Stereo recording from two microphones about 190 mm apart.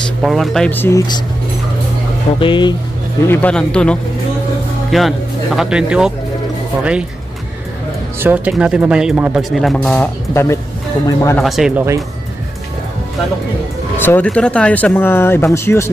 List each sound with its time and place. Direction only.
0.2 s speech: centre (ahead or behind); by 1.2 s 20° left (ahead or behind)
2.3 s speech: 25° left (ahead or behind)
3.3 s speech: 5° left (ahead or behind)
8.2 s speech: 5° right (ahead or behind); by 10.6 s 15° left (ahead or behind)
11.3 s speech: centre (ahead or behind)
13.9 s speech: 10° left (ahead or behind)